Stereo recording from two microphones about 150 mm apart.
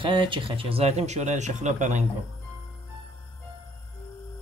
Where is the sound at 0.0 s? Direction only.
35° right (ahead or behind); by 2.0 s 50° right (ahead or behind).